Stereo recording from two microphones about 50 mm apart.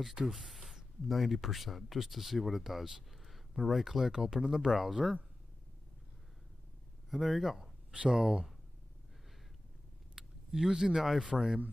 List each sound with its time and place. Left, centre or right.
0.0 s speech: centre
7.1 s speech: centre
10.1 s speech: centre